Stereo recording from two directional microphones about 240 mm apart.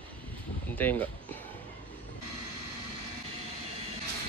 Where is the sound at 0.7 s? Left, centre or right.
Centre.